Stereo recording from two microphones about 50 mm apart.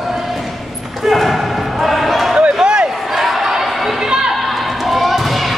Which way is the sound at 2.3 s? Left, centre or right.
Centre.